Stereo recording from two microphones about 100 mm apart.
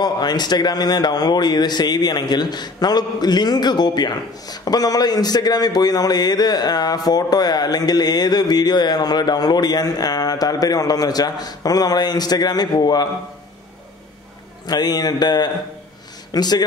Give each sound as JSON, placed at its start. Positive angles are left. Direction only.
{"t": 0.0, "sound": "speech", "side_deg": 45}
{"t": 14.7, "sound": "speech", "side_deg": 40}